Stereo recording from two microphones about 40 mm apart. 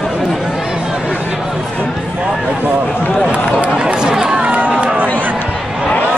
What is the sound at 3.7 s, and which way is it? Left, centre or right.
Run, right.